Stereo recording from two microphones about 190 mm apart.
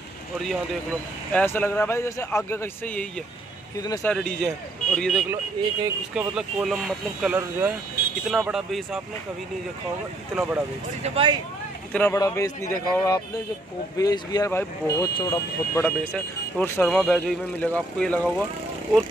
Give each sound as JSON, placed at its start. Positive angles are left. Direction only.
{"t": 1.3, "sound": "a man's voice", "side_deg": 10}
{"t": 3.7, "sound": "speech", "side_deg": 20}
{"t": 4.1, "sound": "speech", "side_deg": 5}
{"t": 5.3, "sound": "speech", "side_deg": -15}
{"t": 6.1, "sound": "speech", "side_deg": -5}
{"t": 10.3, "sound": "speech", "side_deg": -10}
{"t": 11.0, "sound": "speech", "side_deg": -30}
{"t": 11.9, "sound": "a man's voice", "side_deg": 10}
{"t": 15.8, "sound": "speech", "side_deg": 10}